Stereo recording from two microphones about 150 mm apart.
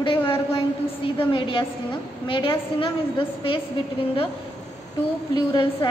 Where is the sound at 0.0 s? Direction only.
35° left (ahead or behind).